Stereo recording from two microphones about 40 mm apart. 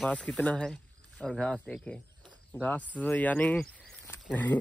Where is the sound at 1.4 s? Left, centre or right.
Centre.